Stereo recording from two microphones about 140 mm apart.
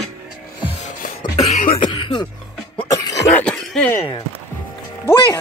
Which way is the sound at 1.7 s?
35° left (ahead or behind).